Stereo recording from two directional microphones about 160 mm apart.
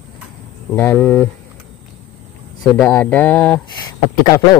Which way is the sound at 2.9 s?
10° left (ahead or behind).